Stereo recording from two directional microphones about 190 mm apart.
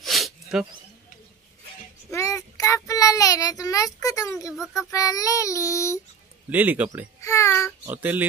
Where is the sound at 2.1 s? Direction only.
15° left (ahead or behind).